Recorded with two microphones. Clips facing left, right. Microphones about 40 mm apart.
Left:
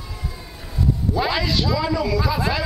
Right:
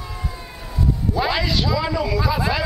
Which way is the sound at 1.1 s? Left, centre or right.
Centre.